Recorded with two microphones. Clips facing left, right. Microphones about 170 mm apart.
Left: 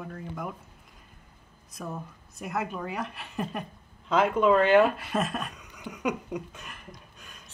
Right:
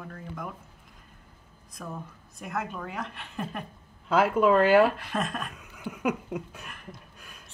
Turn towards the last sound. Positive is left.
turn(degrees=-5)  # may be behind; listen again after turning